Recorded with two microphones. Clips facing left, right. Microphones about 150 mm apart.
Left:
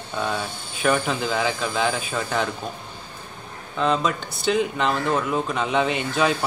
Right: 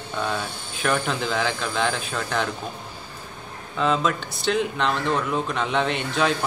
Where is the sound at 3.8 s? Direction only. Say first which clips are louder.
Even; centre (ahead or behind).